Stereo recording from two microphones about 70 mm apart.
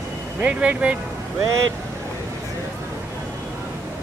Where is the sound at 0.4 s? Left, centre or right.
Right.